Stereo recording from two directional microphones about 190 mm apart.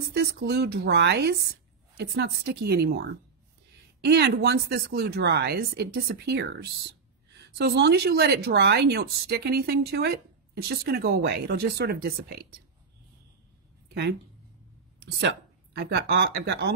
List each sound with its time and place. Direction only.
0.1 s a woman's voice: 60° right (ahead or behind)
15.1 s speech: 60° right (ahead or behind)